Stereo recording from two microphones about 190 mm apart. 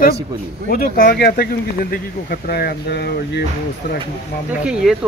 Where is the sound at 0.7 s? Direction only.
50° left (ahead or behind).